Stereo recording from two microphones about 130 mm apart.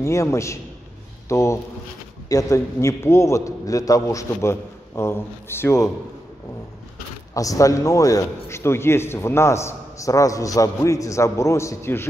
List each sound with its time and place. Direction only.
0.0 s a man's voice: 25° left (ahead or behind)
7.3 s a man's voice: 25° left (ahead or behind)